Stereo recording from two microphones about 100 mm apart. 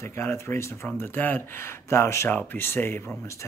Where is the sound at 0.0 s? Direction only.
25° left (ahead or behind).